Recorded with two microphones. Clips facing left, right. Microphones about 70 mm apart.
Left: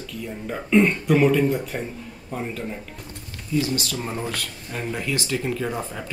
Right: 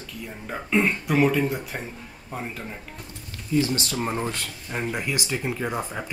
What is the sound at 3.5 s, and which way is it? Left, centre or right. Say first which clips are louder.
Speech: right 1 dB; right.